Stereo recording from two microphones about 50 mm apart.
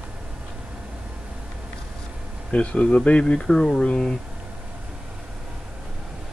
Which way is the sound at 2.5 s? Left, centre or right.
Left.